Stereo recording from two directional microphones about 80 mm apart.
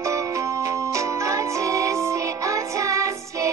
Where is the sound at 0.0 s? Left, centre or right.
Right.